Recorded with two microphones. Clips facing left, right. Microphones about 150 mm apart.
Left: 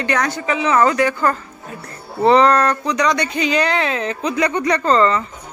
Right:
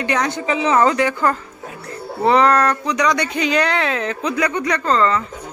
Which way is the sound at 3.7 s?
15° left (ahead or behind).